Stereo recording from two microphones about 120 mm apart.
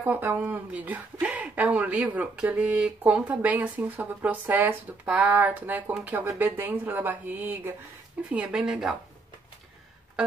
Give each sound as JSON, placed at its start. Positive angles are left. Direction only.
{"t": 0.0, "sound": "speech", "side_deg": -15}